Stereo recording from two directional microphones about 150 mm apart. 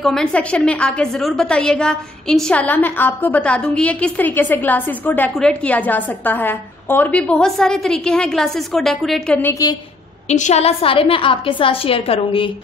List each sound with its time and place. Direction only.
0.0 s a woman's voice: 5° left (ahead or behind)
9.4 s a woman's voice: 20° left (ahead or behind)
10.2 s a woman's voice: 50° left (ahead or behind)